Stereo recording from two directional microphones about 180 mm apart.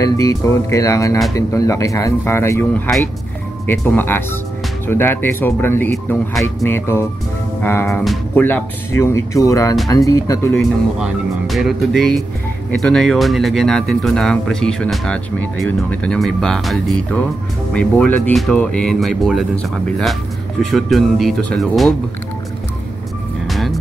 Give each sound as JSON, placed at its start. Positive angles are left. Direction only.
{"t": 0.0, "sound": "speech", "side_deg": 20}
{"t": 11.0, "sound": "speech", "side_deg": 0}
{"t": 23.4, "sound": "music", "side_deg": 0}